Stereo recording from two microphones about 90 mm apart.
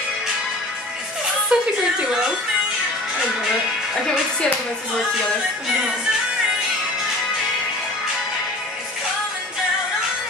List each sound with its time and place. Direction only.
1.5 s a woman's voice: 10° right (ahead or behind)